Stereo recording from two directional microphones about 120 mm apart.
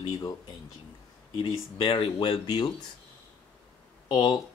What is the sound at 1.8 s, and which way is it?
Speech, 40° left (ahead or behind).